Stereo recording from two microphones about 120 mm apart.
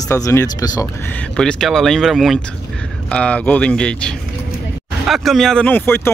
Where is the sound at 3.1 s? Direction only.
10° left (ahead or behind).